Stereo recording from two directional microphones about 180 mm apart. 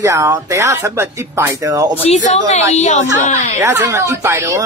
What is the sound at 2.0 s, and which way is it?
Speech, 40° left (ahead or behind).